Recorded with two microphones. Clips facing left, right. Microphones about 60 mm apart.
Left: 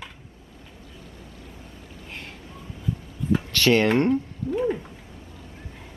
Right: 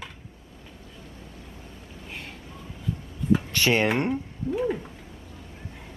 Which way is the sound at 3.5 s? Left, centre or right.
Centre.